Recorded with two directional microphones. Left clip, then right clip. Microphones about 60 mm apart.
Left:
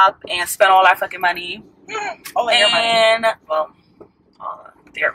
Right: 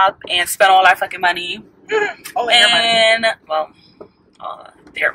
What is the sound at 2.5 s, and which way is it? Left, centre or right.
Speech, right.